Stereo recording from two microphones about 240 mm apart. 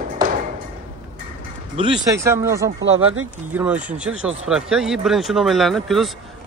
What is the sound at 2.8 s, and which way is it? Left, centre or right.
Speech, right.